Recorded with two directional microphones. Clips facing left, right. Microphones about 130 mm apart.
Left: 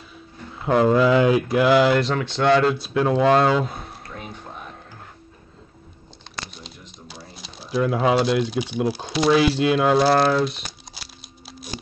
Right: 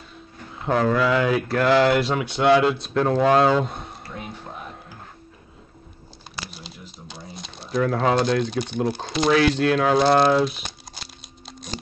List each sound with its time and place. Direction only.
0.6 s a sound: 5° left (ahead or behind)
0.8 s speech: 20° left (ahead or behind)
2.0 s speech: 10° right (ahead or behind)
2.8 s speech: 5° left (ahead or behind)
6.3 s speech: centre (ahead or behind)
11.4 s computer keyboard: 5° left (ahead or behind)